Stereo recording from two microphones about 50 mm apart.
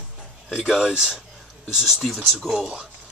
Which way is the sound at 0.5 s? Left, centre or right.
Centre.